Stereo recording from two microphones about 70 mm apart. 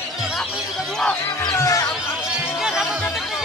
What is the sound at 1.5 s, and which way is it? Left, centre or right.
Music, left.